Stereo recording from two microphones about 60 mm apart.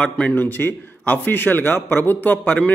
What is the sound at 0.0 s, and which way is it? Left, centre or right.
A man's voice, left.